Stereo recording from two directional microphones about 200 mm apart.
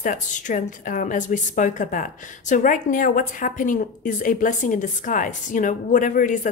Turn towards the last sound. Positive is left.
turn(degrees=40)  # may be behind; listen again after turning